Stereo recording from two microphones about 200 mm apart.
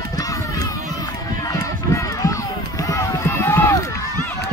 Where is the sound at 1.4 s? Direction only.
15° left (ahead or behind).